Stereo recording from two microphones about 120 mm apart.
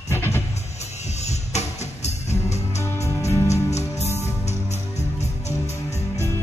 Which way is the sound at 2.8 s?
25° left (ahead or behind).